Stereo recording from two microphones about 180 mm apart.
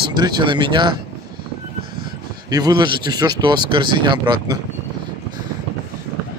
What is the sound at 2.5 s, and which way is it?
Speech, 25° right (ahead or behind).